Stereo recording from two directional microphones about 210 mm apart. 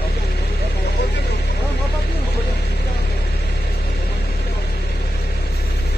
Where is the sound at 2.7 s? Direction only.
50° left (ahead or behind).